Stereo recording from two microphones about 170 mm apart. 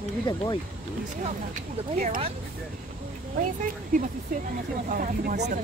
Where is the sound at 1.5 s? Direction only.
50° right (ahead or behind).